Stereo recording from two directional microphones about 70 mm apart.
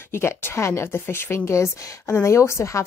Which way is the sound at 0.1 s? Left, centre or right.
Left.